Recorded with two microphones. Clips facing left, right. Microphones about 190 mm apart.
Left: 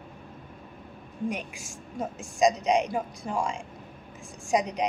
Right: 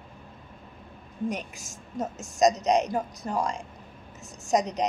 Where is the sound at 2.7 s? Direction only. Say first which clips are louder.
Right 1 dB; 40° right (ahead or behind).